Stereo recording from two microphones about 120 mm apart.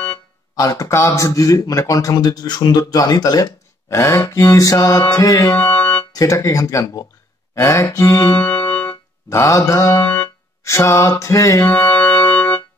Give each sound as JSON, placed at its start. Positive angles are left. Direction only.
{"t": 0.6, "sound": "speech", "side_deg": 30}
{"t": 5.6, "sound": "organ", "side_deg": 15}
{"t": 6.1, "sound": "speech", "side_deg": 30}
{"t": 8.4, "sound": "music", "side_deg": 15}
{"t": 9.3, "sound": "speech", "side_deg": 25}
{"t": 10.6, "sound": "music", "side_deg": 25}
{"t": 12.3, "sound": "organ", "side_deg": 15}